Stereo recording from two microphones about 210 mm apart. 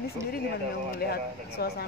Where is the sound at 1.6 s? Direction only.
50° left (ahead or behind).